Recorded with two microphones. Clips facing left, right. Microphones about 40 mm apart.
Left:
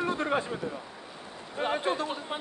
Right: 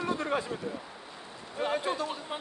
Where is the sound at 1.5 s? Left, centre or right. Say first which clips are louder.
Left 2 dB; left.